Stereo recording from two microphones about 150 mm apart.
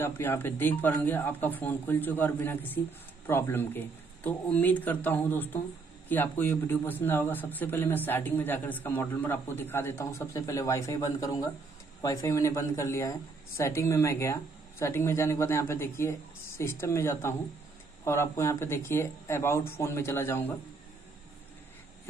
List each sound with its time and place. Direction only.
0.0 s a man's voice: 15° left (ahead or behind)